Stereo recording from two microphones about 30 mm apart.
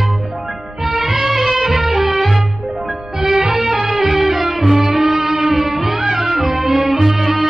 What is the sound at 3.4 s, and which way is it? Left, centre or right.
Music, centre.